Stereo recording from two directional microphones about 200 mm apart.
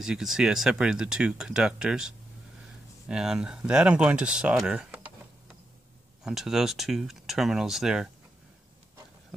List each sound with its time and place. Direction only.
0.0 s speech: centre (ahead or behind)